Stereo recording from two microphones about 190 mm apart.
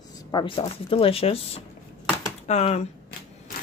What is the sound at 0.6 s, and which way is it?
Speech, 30° left (ahead or behind).